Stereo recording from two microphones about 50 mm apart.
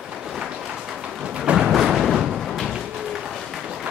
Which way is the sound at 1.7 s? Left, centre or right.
Centre.